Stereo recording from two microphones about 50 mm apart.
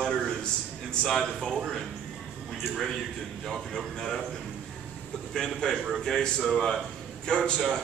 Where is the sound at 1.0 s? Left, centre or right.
Centre.